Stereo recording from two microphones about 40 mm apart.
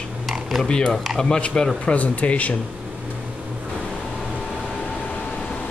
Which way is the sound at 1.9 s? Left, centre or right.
Left.